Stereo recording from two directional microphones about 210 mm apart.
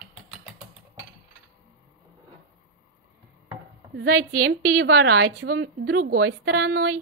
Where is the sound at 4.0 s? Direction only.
90° right.